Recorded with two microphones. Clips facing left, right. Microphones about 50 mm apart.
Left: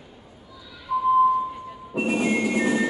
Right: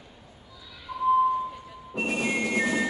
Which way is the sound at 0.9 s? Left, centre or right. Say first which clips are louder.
Left 7 dB; centre.